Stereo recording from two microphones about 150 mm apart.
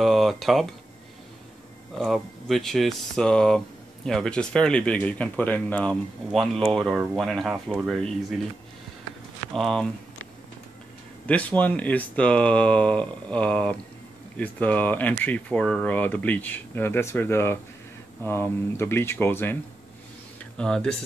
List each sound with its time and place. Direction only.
0.0 s speech: centre (ahead or behind)
2.0 s speech: centre (ahead or behind)
9.5 s speech: centre (ahead or behind)
11.2 s speech: 10° left (ahead or behind)
20.5 s speech: 5° left (ahead or behind)